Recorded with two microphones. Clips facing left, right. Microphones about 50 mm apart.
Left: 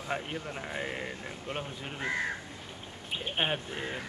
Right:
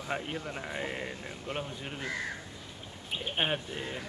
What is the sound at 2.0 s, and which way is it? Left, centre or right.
Speech, left.